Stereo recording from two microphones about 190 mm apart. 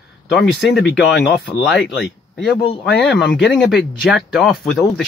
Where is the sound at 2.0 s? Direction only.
Centre (ahead or behind).